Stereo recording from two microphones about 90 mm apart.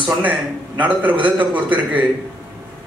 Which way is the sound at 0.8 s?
15° right (ahead or behind).